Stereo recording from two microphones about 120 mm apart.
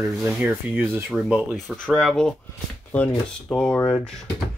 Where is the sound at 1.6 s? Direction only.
5° left (ahead or behind).